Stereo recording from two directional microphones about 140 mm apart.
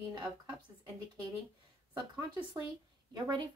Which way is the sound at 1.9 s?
25° right (ahead or behind).